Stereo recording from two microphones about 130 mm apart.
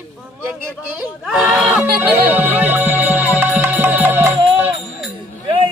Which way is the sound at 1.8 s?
15° right (ahead or behind).